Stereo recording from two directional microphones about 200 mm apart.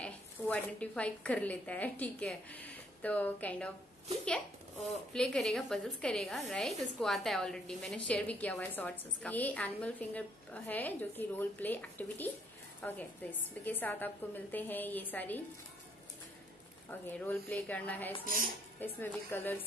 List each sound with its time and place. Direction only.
0.0 s a woman's voice: 5° left (ahead or behind)
4.8 s a woman's voice: 5° left (ahead or behind)
17.2 s a woman's voice: 10° left (ahead or behind)
18.2 s a woman's voice: 45° right (ahead or behind)
18.8 s a woman's voice: 10° left (ahead or behind)